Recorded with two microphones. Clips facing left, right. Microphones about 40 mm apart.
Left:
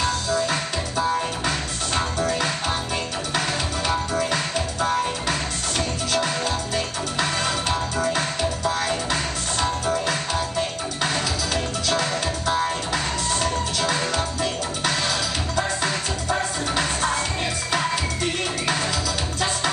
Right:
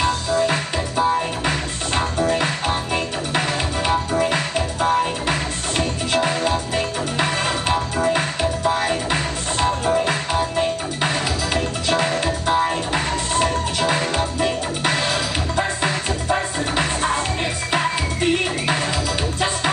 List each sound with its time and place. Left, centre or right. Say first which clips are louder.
0.0 s music: right 4 dB; right